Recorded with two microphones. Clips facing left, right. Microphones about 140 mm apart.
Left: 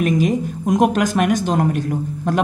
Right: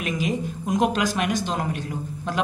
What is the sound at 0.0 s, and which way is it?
Speech, 45° left (ahead or behind).